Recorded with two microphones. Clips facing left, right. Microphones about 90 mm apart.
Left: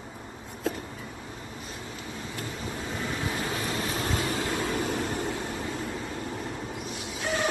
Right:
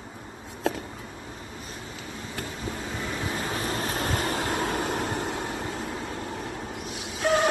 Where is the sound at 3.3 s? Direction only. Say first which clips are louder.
Right 1 dB; 35° right (ahead or behind); by 5.3 s 55° right (ahead or behind).